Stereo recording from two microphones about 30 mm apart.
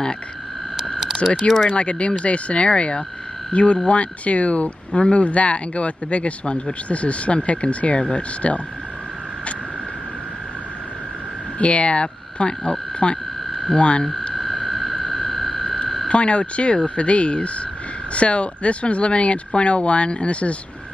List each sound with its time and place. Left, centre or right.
1.2 s speech: left
1.8 s speech: left
11.5 s speech: left
13.5 s a sound: centre
13.7 s speech: left
14.3 s a sound: centre
16.1 s speech: left